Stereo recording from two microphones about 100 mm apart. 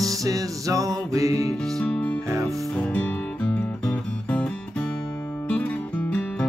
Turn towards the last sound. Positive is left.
turn(degrees=15)  # may be behind; listen again after turning